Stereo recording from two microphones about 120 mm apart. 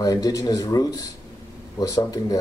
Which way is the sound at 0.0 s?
30° left (ahead or behind).